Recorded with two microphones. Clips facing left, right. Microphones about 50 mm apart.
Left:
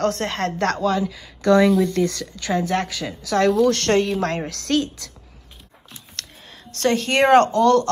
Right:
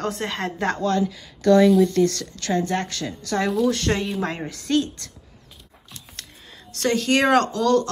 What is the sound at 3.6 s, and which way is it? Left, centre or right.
A woman's voice, left.